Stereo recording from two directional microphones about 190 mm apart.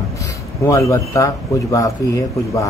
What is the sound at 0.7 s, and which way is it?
A man's voice, 15° left (ahead or behind).